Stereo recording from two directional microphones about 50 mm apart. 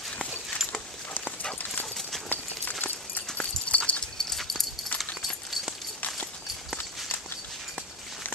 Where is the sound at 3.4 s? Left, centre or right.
Left.